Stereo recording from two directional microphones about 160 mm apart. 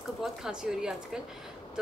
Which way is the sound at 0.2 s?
5° right (ahead or behind).